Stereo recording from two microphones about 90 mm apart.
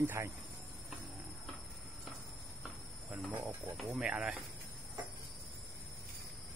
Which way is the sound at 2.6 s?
15° right (ahead or behind).